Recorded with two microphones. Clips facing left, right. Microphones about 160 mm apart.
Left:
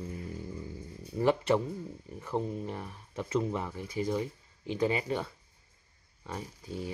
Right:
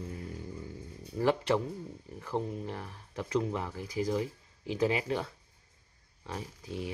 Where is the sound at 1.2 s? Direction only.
Centre (ahead or behind).